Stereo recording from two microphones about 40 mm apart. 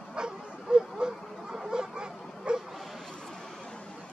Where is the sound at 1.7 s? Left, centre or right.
Right.